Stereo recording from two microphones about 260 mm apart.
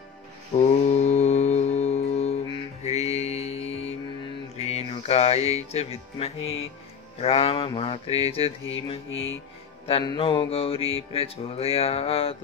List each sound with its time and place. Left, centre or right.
0.6 s music: left
5.7 s mantra: left
9.1 s speech: left
9.8 s mantra: centre